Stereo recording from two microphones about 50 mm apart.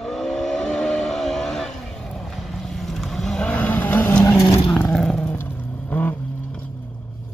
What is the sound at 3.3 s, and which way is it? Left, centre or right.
Vehicle, left.